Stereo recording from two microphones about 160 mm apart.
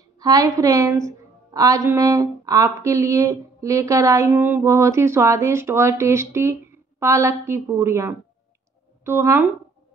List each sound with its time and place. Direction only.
0.2 s a woman's voice: 20° right (ahead or behind)